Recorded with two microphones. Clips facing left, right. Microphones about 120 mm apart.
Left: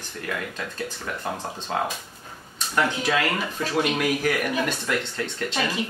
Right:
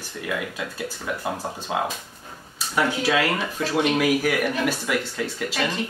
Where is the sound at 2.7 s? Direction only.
5° right (ahead or behind).